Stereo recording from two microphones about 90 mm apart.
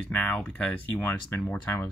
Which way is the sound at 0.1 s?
15° left (ahead or behind).